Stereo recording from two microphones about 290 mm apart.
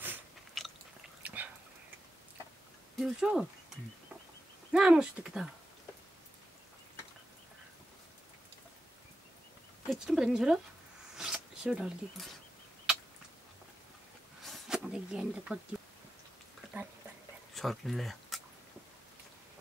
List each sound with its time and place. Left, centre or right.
0.0 s biting: centre
1.2 s whispering: centre
3.0 s speech: centre
4.7 s speech: centre
9.8 s speech: centre
11.1 s zipper: centre
14.4 s zipper: centre
17.6 s speech: centre